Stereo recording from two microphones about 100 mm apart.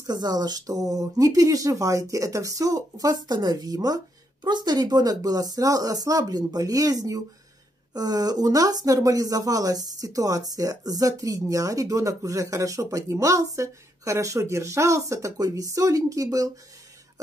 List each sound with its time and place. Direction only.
0.0 s speech: 45° right (ahead or behind)